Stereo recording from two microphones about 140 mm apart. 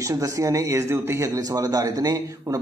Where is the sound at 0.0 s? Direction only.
25° right (ahead or behind).